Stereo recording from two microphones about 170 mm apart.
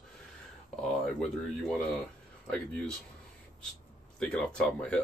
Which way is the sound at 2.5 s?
5° left (ahead or behind).